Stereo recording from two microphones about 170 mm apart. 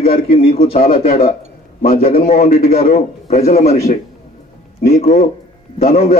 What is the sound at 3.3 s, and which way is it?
Speech, 40° left (ahead or behind).